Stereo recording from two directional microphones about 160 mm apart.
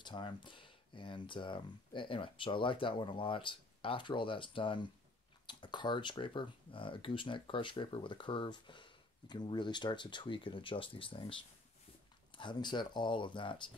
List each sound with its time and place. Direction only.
0.0 s speech: 30° left (ahead or behind)